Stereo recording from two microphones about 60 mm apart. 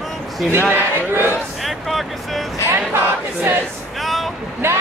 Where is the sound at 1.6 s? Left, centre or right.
Centre.